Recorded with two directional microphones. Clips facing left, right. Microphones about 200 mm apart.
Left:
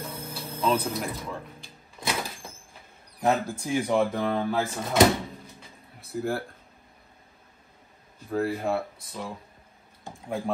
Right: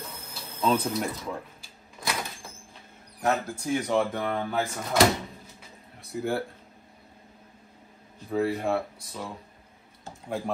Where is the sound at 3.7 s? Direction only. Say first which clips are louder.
Left 1 dB; 15° left (ahead or behind).